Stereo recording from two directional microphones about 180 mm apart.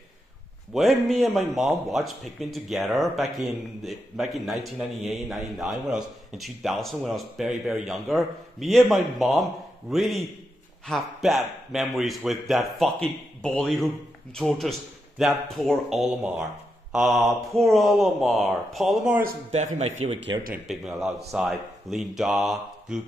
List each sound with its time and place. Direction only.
0.7 s speech: centre (ahead or behind)
20.0 s speech: 35° right (ahead or behind)
20.5 s speech: centre (ahead or behind)